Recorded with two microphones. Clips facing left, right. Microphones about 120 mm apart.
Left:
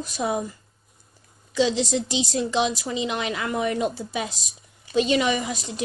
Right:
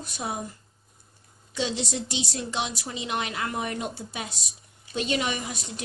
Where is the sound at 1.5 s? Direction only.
90° left.